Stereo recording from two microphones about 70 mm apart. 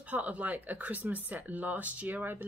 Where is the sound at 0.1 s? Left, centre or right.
Right.